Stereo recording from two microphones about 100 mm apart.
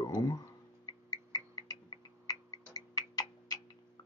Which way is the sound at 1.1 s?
45° left (ahead or behind).